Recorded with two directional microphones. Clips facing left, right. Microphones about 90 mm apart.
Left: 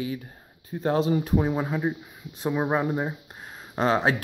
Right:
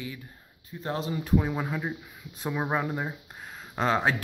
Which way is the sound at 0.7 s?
60° left (ahead or behind).